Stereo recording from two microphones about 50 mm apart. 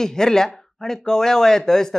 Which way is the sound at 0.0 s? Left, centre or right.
Centre.